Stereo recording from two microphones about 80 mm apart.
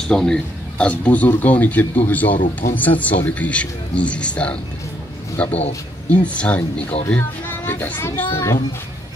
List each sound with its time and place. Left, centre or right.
0.1 s a man's voice: centre; by 8.5 s left